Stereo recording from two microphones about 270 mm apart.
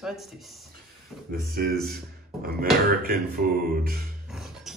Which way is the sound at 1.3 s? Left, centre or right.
Right.